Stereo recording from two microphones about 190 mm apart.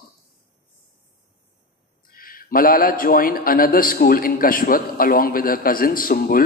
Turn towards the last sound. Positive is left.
turn(degrees=50)  # may be behind; listen again after turning